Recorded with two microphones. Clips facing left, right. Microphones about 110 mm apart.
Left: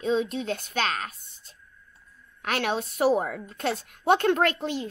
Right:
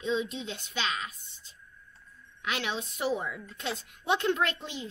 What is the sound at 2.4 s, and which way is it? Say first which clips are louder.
A woman's voice: left 6 dB; 50° left (ahead or behind).